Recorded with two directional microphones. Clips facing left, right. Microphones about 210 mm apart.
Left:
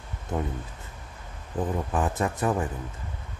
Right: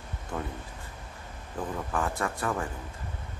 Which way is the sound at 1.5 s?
20° left (ahead or behind).